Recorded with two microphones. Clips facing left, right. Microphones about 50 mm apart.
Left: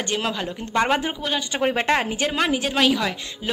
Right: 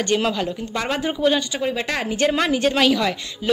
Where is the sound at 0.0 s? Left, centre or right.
Centre.